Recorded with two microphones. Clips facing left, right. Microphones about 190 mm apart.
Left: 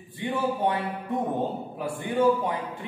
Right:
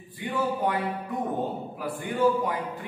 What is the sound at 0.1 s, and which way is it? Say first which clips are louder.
A man's voice: left 1 dB; 25° left (ahead or behind).